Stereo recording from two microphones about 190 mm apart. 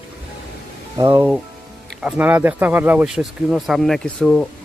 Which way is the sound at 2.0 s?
10° right (ahead or behind).